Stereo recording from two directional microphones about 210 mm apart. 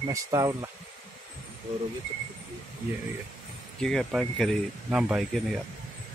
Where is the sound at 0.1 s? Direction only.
15° right (ahead or behind).